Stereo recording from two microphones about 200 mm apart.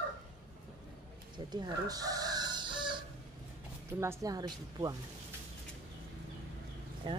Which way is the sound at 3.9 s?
15° right (ahead or behind).